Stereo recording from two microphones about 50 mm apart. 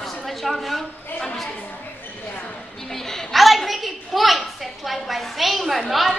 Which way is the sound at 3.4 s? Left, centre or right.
Centre.